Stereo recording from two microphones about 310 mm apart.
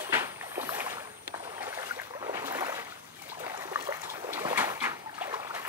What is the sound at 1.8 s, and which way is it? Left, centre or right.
Boat, centre.